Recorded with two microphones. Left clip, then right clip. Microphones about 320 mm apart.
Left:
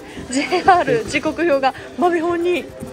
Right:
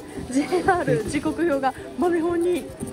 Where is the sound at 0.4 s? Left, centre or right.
Centre.